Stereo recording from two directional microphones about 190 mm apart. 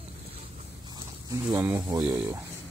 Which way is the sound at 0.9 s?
20° right (ahead or behind).